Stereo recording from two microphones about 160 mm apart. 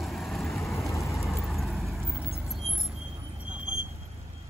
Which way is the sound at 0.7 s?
20° left (ahead or behind).